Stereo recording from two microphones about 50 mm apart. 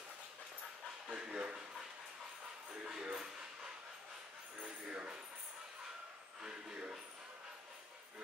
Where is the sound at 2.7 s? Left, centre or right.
Centre.